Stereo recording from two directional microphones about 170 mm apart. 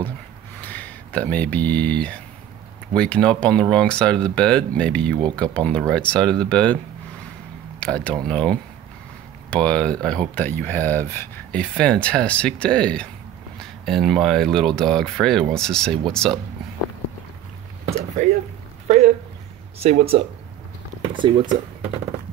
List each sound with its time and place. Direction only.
0.6 s speech: 10° left (ahead or behind)
7.8 s speech: 5° left (ahead or behind)
17.9 s a sound: 45° right (ahead or behind)
19.8 s speech: 40° right (ahead or behind)